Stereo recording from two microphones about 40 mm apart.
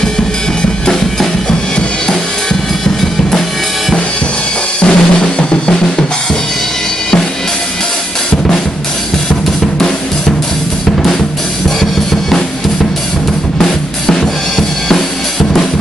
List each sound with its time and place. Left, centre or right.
4.8 s drum: left
13.6 s drum kit: centre